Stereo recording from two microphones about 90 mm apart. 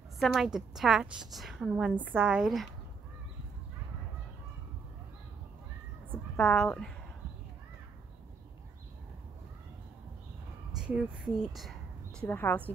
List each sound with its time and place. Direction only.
0.2 s a woman's voice: centre (ahead or behind)
2.4 s a woman's voice: centre (ahead or behind)
6.3 s a woman's voice: 10° left (ahead or behind)
10.8 s speech: 10° right (ahead or behind)
12.2 s a woman's voice: 20° left (ahead or behind)